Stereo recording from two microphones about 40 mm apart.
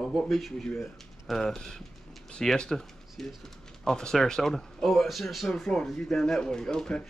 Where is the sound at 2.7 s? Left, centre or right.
Centre.